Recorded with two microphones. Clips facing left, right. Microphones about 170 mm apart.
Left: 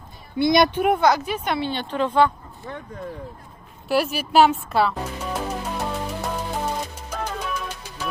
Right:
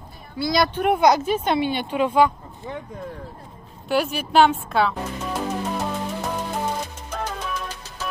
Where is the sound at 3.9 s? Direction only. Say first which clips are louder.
Even; 5° left (ahead or behind).